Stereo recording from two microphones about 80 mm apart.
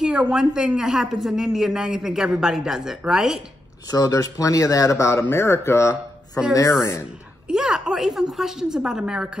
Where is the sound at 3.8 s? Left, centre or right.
Left.